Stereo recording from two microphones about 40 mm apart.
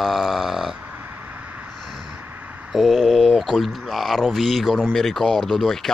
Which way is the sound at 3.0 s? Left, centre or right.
Centre.